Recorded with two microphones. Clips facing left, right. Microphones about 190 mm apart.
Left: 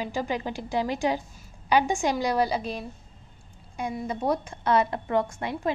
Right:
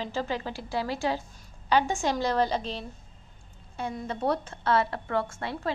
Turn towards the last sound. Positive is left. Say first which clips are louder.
# left 3 dB
turn(degrees=15)  # may be behind; listen again after turning